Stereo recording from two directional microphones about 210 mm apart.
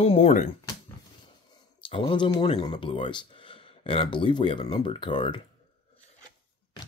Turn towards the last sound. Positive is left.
turn(degrees=25)  # may be behind; listen again after turning